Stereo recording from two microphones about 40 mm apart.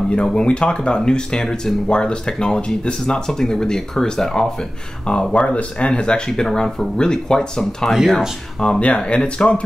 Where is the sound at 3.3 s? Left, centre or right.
Centre.